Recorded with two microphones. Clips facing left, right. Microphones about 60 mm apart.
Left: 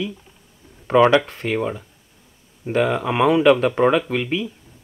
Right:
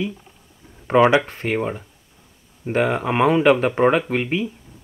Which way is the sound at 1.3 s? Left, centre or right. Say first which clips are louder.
Even; right.